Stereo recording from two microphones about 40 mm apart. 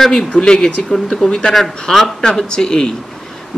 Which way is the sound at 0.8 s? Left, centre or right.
Centre.